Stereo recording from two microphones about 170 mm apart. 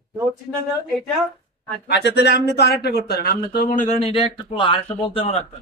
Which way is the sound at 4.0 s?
30° left (ahead or behind).